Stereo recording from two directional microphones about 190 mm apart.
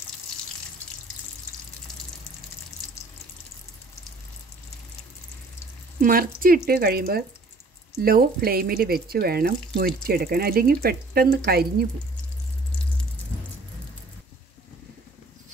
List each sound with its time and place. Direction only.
5.9 s speech: 50° right (ahead or behind)